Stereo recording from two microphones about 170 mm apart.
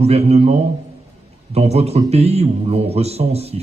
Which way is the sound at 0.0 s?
40° right (ahead or behind).